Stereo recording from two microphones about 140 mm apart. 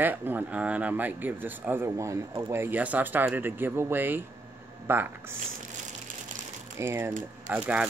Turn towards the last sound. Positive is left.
turn(degrees=-10)  # may be behind; listen again after turning